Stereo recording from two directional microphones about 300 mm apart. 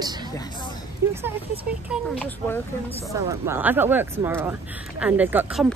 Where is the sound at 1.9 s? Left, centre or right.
Centre.